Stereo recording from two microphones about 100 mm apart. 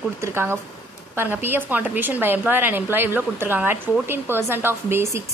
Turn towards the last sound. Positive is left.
turn(degrees=-25)  # may be behind; listen again after turning